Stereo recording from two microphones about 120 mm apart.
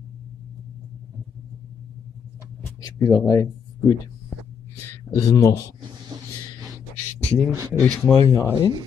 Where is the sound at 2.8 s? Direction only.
30° left (ahead or behind).